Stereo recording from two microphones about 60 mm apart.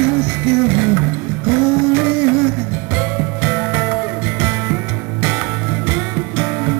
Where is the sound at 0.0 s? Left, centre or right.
Right.